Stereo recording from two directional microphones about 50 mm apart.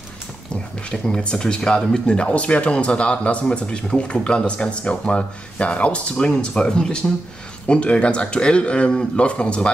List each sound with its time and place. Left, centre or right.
0.8 s speech: centre